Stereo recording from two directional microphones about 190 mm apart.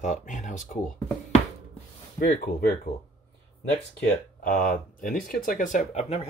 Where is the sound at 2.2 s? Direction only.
50° left (ahead or behind).